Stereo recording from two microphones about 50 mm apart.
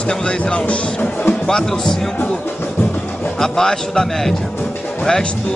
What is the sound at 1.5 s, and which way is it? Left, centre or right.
Speech, centre.